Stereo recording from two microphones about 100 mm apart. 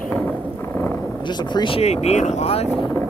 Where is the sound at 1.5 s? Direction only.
65° left (ahead or behind); by 2.6 s 90° left.